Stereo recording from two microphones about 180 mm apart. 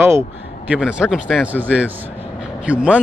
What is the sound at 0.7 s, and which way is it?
Speech, 5° right (ahead or behind).